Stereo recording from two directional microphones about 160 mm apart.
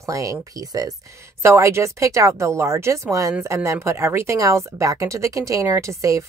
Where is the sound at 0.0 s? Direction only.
20° right (ahead or behind).